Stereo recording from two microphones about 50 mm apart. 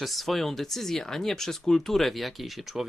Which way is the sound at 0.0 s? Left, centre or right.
Centre.